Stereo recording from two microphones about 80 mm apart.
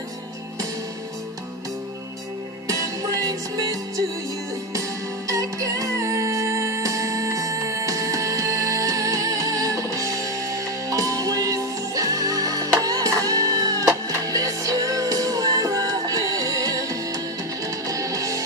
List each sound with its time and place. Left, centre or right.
2.7 s music: right